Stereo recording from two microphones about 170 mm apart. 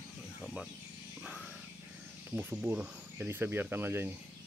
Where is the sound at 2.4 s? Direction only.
10° right (ahead or behind).